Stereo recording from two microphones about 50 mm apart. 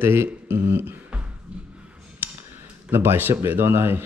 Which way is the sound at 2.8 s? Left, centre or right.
Right.